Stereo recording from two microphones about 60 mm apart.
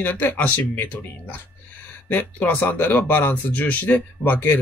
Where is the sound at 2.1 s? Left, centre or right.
Left.